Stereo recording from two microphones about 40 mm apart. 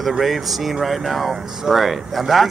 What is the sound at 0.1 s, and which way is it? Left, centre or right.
Speech, centre.